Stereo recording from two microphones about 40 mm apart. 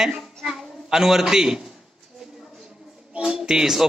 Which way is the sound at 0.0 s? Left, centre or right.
Centre.